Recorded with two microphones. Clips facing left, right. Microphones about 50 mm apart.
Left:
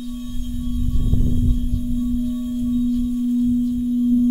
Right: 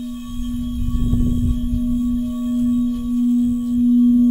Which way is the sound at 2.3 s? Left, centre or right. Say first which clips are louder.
Right 3 dB; right.